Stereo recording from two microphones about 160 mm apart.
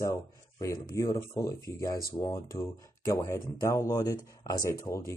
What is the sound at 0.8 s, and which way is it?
Speech, 20° left (ahead or behind).